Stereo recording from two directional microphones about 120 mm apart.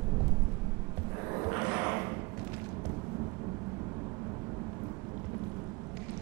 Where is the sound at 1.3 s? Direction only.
25° right (ahead or behind).